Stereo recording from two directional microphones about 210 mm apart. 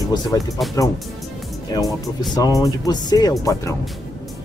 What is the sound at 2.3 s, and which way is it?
Speech, 15° left (ahead or behind).